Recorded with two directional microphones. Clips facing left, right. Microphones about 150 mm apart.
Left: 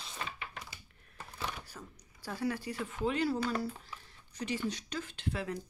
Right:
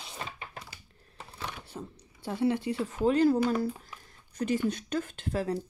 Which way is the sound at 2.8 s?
40° right (ahead or behind).